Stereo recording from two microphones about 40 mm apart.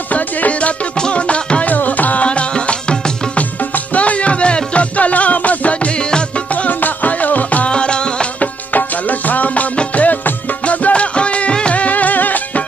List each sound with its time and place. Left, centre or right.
0.1 s music: left
1.8 s music: left
2.2 s music: left
3.7 s music: left
6.5 s music: left
7.7 s music: left
8.4 s music: left